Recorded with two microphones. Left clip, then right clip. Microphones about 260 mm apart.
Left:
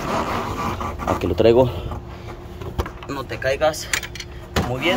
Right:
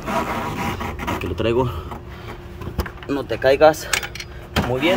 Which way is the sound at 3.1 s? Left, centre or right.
Right.